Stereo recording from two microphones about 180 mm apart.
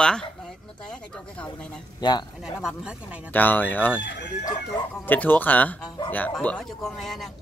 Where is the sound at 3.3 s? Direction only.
10° left (ahead or behind).